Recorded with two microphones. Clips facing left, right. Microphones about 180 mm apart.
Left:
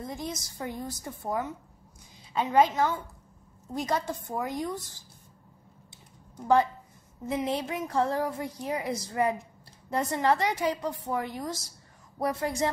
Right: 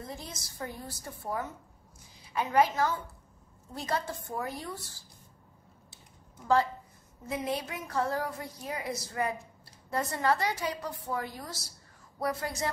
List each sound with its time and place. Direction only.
0.1 s a woman's voice: 20° left (ahead or behind)
6.4 s a woman's voice: 20° left (ahead or behind)